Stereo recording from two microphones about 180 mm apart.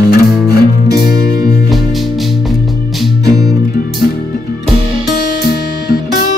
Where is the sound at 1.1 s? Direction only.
20° right (ahead or behind).